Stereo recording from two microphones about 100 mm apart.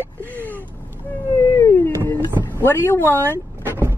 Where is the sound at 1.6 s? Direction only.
30° left (ahead or behind).